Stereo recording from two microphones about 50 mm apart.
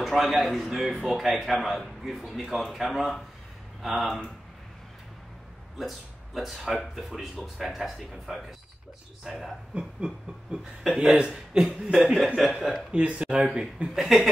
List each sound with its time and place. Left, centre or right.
0.0 s speech: centre
5.8 s speech: centre
9.8 s speech: centre
12.4 s speech: centre
12.9 s speech: right
13.9 s speech: centre